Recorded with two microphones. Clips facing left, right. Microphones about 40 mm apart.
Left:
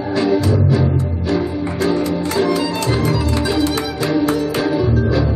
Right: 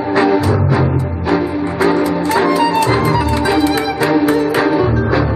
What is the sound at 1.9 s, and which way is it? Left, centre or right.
Music, right.